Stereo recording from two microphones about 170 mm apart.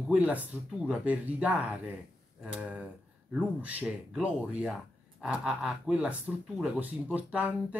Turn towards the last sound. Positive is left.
turn(degrees=-10)  # may be behind; listen again after turning